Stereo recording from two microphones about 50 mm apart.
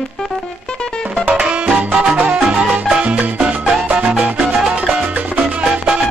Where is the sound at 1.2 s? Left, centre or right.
Right.